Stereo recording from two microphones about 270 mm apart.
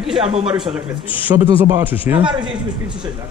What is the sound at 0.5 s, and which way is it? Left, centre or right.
A man's voice, centre.